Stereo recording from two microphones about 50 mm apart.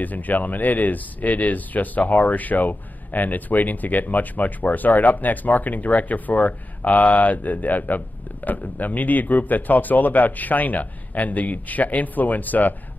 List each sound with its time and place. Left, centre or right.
0.0 s speech: left